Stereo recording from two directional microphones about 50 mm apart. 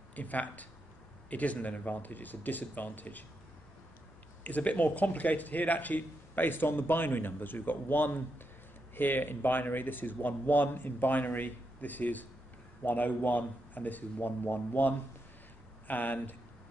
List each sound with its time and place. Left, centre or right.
0.1 s speech: left
4.4 s speech: left